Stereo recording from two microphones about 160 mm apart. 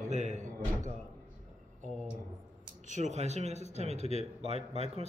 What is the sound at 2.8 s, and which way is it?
A man's voice, 50° right (ahead or behind).